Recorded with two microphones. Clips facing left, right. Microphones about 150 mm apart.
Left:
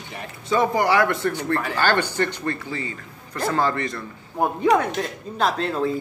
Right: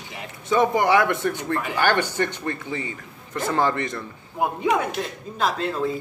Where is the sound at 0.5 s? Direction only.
20° right (ahead or behind).